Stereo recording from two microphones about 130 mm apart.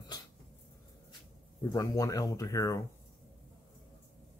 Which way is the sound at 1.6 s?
25° left (ahead or behind).